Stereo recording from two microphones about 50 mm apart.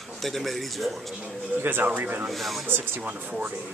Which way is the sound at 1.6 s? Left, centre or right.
Right.